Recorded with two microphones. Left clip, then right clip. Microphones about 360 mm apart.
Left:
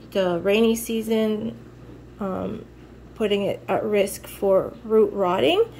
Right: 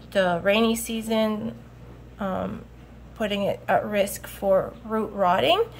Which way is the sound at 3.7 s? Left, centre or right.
Right.